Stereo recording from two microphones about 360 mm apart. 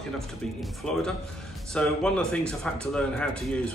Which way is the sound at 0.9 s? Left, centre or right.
Centre.